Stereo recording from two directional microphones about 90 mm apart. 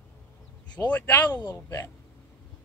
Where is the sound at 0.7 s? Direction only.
20° left (ahead or behind).